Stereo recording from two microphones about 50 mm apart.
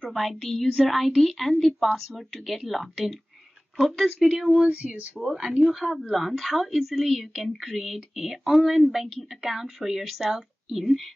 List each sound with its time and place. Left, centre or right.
0.0 s a woman's voice: centre
1.5 s speech: centre
2.0 s a woman's voice: centre
4.5 s speech: centre
5.6 s a woman's voice: centre